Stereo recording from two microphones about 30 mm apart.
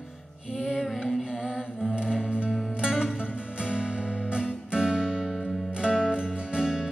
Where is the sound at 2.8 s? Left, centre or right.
Right.